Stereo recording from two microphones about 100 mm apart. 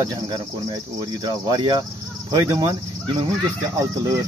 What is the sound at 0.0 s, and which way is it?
Speech, 35° right (ahead or behind).